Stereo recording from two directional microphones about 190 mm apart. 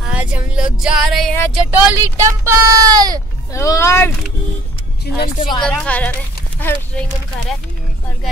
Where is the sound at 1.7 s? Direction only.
10° right (ahead or behind).